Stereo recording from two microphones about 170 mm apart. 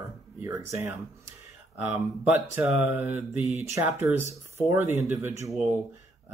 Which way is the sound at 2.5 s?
10° right (ahead or behind).